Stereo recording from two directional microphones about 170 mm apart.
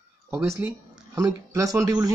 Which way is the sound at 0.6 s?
15° right (ahead or behind).